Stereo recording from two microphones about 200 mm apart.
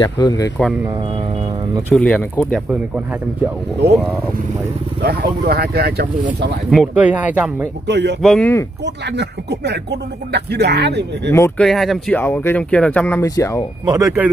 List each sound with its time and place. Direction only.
0.0 s speech: 20° left (ahead or behind)
2.0 s speech: 5° left (ahead or behind)
3.8 s speech: 55° right (ahead or behind)
5.0 s speech: 50° right (ahead or behind)
6.7 s speech: 5° right (ahead or behind)
7.8 s speech: 60° right (ahead or behind)
8.2 s speech: centre (ahead or behind)
8.8 s speech: 60° right (ahead or behind)
11.3 s speech: 10° left (ahead or behind)
13.8 s speech: 15° right (ahead or behind)